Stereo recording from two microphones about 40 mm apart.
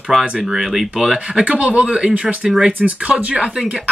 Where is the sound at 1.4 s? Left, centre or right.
Right.